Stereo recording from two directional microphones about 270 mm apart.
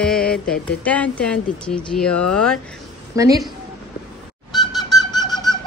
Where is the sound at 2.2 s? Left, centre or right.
Left.